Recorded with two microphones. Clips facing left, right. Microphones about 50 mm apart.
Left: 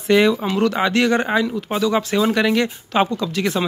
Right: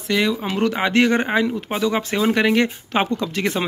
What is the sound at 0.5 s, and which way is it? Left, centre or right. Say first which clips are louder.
Speech: left 2 dB; centre.